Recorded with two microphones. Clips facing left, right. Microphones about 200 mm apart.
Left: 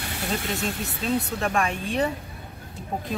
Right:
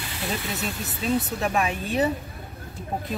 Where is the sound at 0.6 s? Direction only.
5° right (ahead or behind).